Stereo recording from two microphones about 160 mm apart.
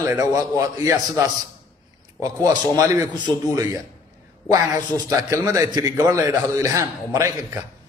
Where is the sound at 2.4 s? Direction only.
25° right (ahead or behind).